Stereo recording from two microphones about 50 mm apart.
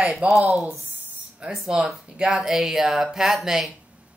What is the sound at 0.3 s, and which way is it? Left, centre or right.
Speech, centre.